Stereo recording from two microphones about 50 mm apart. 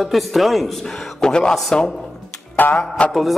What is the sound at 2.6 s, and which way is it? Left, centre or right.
Music, left.